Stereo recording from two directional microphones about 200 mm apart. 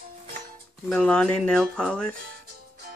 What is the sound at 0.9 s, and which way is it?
Speech, 5° left (ahead or behind).